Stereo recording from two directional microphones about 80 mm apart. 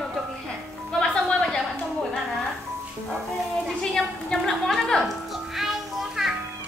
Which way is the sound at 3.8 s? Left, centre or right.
Centre.